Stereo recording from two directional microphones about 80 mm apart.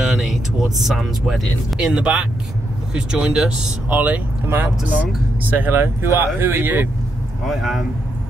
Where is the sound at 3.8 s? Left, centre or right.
Centre.